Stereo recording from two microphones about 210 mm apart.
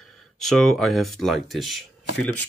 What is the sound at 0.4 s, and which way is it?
Speech, centre (ahead or behind).